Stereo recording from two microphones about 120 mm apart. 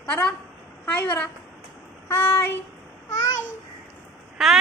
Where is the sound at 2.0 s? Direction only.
20° left (ahead or behind).